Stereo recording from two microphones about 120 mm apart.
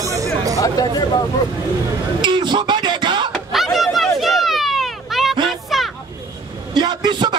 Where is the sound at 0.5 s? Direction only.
30° left (ahead or behind).